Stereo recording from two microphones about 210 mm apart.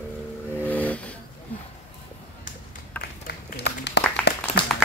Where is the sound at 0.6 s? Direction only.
5° left (ahead or behind).